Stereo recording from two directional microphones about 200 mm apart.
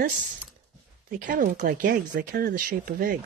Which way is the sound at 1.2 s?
40° right (ahead or behind).